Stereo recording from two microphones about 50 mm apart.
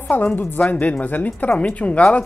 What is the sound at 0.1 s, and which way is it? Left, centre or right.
Speech, left.